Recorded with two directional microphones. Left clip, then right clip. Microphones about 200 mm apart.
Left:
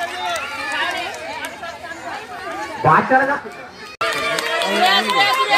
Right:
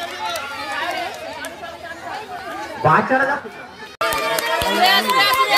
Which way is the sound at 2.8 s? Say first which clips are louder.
Left 1 dB; 5° right (ahead or behind).